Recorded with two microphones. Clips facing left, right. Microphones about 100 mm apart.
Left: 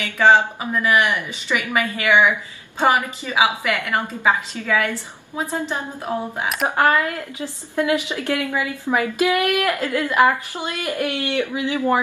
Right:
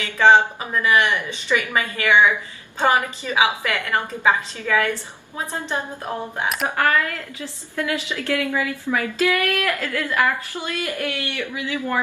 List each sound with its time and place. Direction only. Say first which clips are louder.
0.0 s a woman's voice: even; 15° left (ahead or behind)